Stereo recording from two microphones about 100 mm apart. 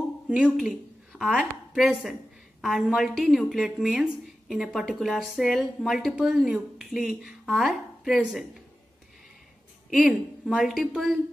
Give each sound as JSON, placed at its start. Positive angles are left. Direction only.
{"t": 0.3, "sound": "a woman's voice", "side_deg": -5}
{"t": 9.9, "sound": "a woman's voice", "side_deg": -5}